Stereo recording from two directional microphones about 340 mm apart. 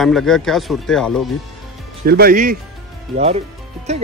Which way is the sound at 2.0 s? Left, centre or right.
Right.